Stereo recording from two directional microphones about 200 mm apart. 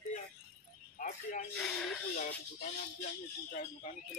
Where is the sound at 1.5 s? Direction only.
5° left (ahead or behind).